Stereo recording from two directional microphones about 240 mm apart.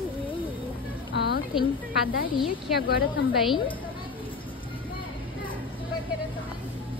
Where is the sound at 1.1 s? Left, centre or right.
Left.